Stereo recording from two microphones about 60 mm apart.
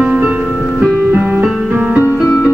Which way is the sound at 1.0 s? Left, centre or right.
Right.